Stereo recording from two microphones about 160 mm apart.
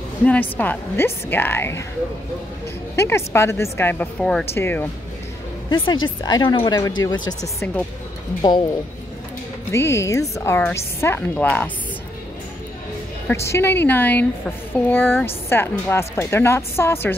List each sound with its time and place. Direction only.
0.2 s speech: 10° left (ahead or behind)
3.0 s speech: 15° left (ahead or behind)
4.6 s speech: 15° left (ahead or behind)
5.7 s speech: 30° left (ahead or behind)
7.6 s speech: 10° left (ahead or behind)
8.4 s speech: 30° left (ahead or behind)
9.7 s speech: 15° left (ahead or behind)
13.3 s speech: 15° left (ahead or behind)